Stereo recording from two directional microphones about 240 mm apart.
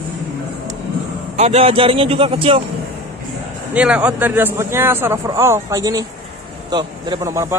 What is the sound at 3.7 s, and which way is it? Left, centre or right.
A man's voice, centre.